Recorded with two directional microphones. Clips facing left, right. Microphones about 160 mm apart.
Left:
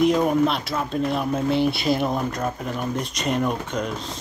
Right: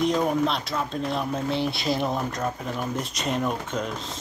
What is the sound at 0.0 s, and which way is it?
Speech, 5° left (ahead or behind).